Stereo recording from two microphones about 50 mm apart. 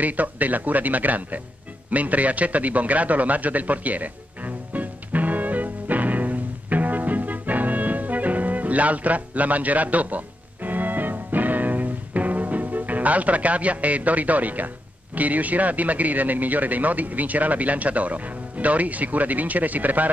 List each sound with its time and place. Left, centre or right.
0.0 s speech: right
1.9 s a sound: right
15.1 s speech: right